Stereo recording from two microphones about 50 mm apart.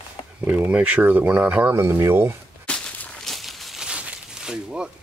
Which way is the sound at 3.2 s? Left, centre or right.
Centre.